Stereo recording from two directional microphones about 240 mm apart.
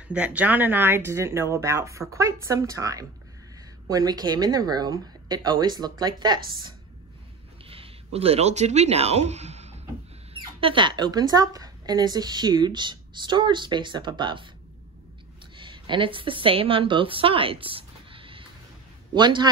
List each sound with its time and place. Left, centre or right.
0.1 s speech: centre
7.6 s speech: right
15.5 s a woman's voice: centre